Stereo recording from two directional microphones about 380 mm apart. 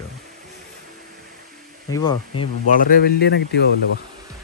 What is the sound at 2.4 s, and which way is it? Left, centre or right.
Speech, left.